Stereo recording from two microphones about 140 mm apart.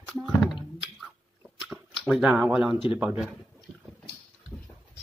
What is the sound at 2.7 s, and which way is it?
Speech, 40° left (ahead or behind).